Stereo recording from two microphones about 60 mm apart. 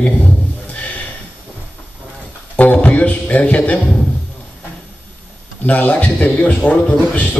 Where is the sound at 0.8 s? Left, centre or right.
Left.